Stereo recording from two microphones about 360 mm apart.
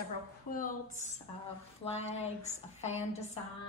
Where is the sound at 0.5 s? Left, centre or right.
Left.